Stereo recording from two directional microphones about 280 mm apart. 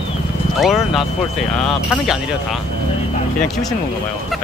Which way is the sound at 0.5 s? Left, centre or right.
Centre.